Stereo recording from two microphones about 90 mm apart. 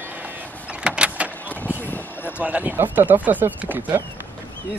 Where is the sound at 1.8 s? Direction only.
20° left (ahead or behind).